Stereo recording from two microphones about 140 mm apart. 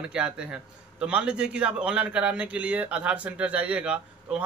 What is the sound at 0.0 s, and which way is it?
A man's voice, 5° right (ahead or behind).